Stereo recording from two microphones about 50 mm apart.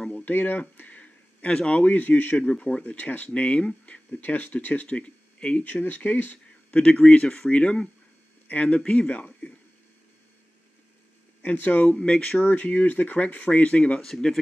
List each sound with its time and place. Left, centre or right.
0.2 s a sound: left
1.7 s speech: left
2.4 s speech: left
3.0 s speech: left
4.2 s speech: left; by 5.6 s centre
5.6 s speech: left
6.7 s speech: left
11.4 s speech: left
11.9 s speech: left
14.0 s speech: centre